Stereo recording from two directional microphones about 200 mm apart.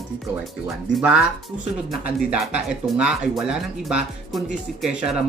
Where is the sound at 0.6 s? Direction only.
5° right (ahead or behind).